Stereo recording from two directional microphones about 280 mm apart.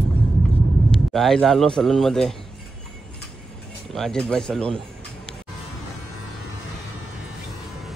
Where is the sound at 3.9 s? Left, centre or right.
Centre.